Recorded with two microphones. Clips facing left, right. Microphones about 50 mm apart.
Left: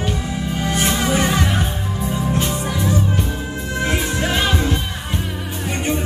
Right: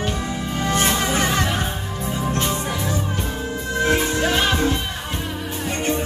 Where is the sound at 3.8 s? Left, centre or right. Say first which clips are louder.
Right 2 dB; centre.